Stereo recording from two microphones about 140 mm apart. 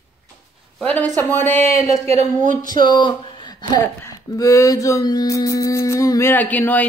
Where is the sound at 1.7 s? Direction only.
50° right (ahead or behind).